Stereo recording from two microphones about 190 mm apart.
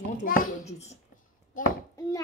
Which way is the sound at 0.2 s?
45° left (ahead or behind).